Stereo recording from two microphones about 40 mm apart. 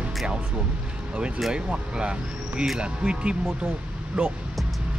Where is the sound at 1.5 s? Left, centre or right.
Right.